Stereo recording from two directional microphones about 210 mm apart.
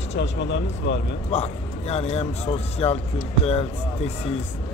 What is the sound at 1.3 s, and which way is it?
A man's voice, 30° left (ahead or behind).